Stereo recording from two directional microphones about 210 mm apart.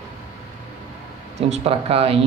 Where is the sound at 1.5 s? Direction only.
30° right (ahead or behind).